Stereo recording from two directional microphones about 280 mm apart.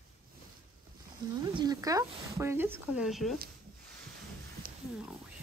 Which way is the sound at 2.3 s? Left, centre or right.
Centre.